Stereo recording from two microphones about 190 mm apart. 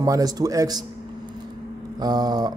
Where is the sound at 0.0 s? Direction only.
20° right (ahead or behind).